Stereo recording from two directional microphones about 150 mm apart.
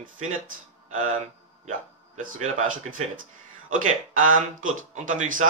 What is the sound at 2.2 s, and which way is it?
Speech, 60° right (ahead or behind).